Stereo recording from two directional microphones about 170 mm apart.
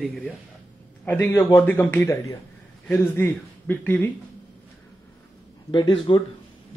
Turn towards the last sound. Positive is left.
turn(degrees=25)  # may be behind; listen again after turning